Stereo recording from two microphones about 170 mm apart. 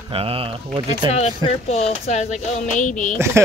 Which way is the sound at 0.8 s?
35° left (ahead or behind).